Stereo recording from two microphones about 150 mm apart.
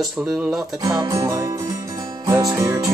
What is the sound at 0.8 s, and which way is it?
Music, 25° right (ahead or behind).